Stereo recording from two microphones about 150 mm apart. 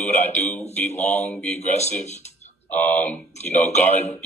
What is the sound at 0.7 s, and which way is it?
Speech, 50° left (ahead or behind).